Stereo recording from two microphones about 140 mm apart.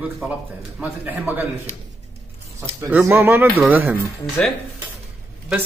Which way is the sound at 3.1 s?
15° right (ahead or behind).